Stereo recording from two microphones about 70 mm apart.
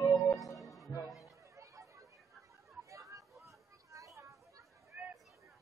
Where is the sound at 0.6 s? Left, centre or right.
Centre.